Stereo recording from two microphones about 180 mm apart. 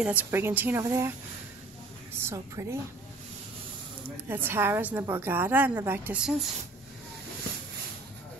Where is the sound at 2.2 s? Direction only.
15° right (ahead or behind).